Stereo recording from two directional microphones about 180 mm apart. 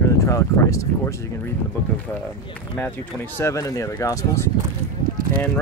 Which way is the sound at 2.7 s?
10° left (ahead or behind).